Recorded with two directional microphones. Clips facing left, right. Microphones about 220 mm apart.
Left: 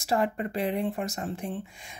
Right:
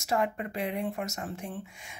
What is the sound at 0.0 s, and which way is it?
Speech, 35° left (ahead or behind).